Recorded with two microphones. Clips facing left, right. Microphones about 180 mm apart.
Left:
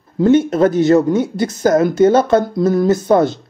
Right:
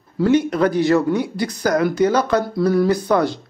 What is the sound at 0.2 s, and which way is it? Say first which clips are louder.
Speech: left 4 dB; 25° left (ahead or behind).